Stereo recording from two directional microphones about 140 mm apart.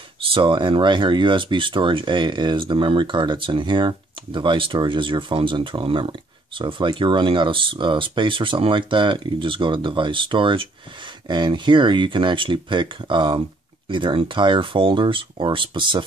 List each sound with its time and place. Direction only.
0.3 s speech: 35° right (ahead or behind)